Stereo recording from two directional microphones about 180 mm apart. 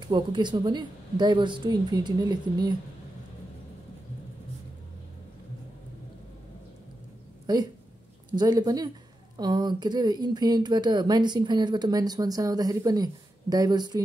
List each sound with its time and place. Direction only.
0.0 s speech: 25° right (ahead or behind)
7.4 s speech: 25° right (ahead or behind)